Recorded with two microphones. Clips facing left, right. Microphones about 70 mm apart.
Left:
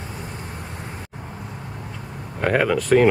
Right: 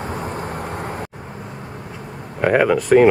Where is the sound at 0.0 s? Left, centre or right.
Right.